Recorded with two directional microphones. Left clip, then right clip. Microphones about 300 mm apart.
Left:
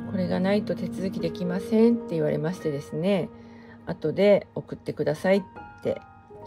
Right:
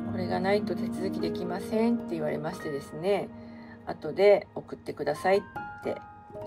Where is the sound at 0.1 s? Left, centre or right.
Left.